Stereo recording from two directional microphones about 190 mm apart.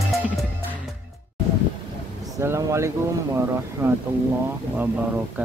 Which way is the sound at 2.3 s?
15° right (ahead or behind).